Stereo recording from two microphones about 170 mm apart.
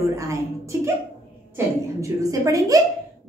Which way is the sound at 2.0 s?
20° right (ahead or behind).